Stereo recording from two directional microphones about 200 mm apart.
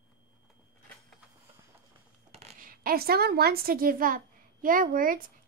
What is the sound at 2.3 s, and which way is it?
A woman's voice, 35° right (ahead or behind).